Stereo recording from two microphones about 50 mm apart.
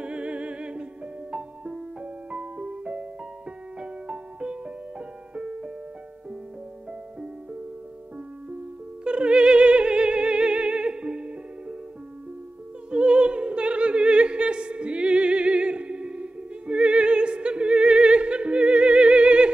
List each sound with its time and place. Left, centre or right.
0.0 s music: right
9.0 s opera: right
12.9 s opera: right